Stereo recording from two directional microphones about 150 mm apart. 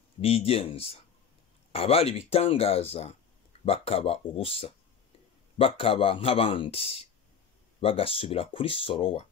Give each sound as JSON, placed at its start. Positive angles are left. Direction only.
{"t": 0.2, "sound": "speech", "side_deg": 40}